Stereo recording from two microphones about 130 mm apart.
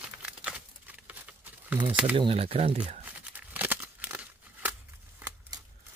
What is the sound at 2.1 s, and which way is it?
Speech, 45° right (ahead or behind).